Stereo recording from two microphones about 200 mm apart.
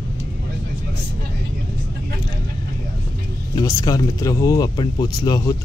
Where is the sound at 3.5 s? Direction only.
20° left (ahead or behind).